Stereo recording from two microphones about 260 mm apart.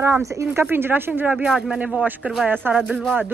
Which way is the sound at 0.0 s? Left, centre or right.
Centre.